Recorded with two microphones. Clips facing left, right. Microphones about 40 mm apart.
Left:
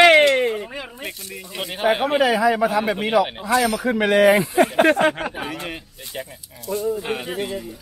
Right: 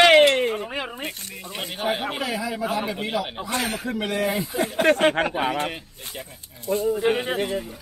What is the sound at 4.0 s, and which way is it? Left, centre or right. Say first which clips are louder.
Speech: left 11 dB; left.